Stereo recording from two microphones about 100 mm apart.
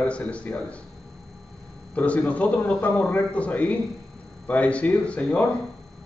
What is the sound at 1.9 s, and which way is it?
A man's voice, 15° left (ahead or behind).